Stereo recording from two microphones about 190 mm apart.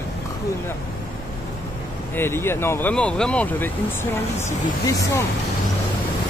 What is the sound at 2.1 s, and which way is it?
Speech, 10° left (ahead or behind).